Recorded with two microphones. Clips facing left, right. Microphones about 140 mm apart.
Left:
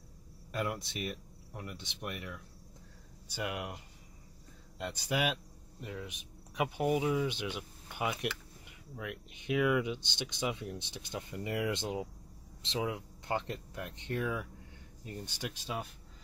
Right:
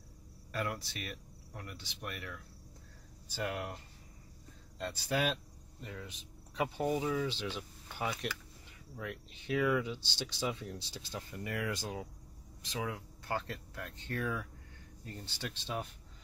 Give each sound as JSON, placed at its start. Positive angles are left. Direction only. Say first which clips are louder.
{"t": 0.5, "sound": "speech", "louder": "left 2 dB", "side_deg": 20}